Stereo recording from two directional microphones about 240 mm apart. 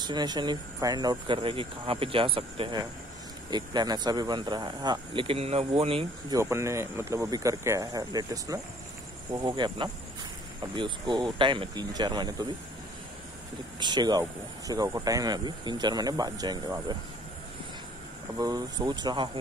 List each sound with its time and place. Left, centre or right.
0.0 s speech: centre
13.7 s speech: centre
18.4 s speech: centre